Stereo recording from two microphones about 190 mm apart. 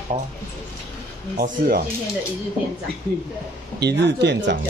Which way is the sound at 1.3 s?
50° right (ahead or behind).